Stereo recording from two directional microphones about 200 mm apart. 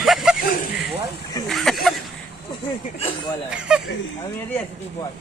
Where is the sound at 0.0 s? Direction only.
Centre (ahead or behind).